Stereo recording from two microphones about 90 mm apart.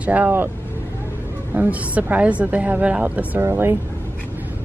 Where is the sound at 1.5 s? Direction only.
15° right (ahead or behind).